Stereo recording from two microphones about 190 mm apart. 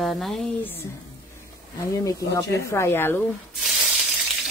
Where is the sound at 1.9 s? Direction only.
15° left (ahead or behind).